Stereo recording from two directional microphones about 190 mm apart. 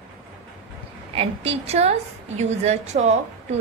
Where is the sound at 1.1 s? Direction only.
30° right (ahead or behind).